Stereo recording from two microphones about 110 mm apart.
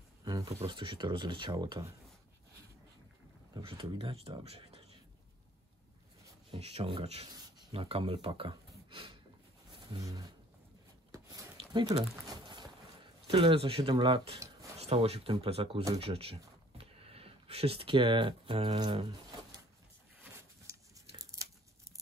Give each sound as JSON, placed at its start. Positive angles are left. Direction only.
{"t": 0.2, "sound": "a sound", "side_deg": -35}
{"t": 0.7, "sound": "speech", "side_deg": -50}
{"t": 3.6, "sound": "speech", "side_deg": -55}
{"t": 6.5, "sound": "speech", "side_deg": -65}
{"t": 10.0, "sound": "speech", "side_deg": -35}
{"t": 11.5, "sound": "a sound", "side_deg": -40}
{"t": 13.3, "sound": "speech", "side_deg": -55}
{"t": 14.8, "sound": "speech", "side_deg": -65}
{"t": 21.2, "sound": "tearing", "side_deg": -30}